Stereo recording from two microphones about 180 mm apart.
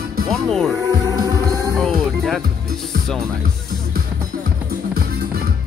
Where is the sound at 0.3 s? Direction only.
Centre (ahead or behind).